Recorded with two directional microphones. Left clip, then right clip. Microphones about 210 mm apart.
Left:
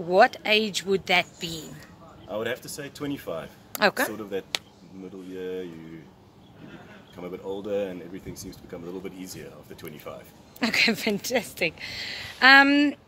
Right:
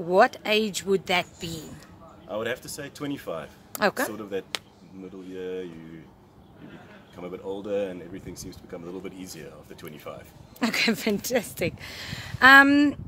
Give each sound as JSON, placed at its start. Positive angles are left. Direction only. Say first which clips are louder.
{"t": 0.1, "sound": "speech", "louder": "left 1 dB", "side_deg": -20}
{"t": 2.2, "sound": "speech", "louder": "even", "side_deg": 0}
{"t": 3.7, "sound": "speech", "louder": "left 2 dB", "side_deg": -5}
{"t": 4.2, "sound": "speech", "louder": "left 1 dB", "side_deg": 5}
{"t": 7.2, "sound": "speech", "louder": "even", "side_deg": 0}
{"t": 10.6, "sound": "a woman's voice", "louder": "left 2 dB", "side_deg": -20}